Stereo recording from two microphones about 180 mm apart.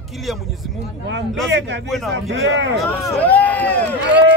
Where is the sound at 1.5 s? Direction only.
80° right.